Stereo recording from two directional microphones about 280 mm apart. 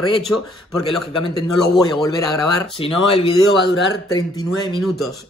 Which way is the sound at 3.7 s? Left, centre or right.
Left.